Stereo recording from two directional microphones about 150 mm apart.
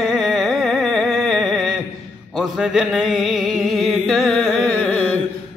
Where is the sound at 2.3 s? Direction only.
5° right (ahead or behind).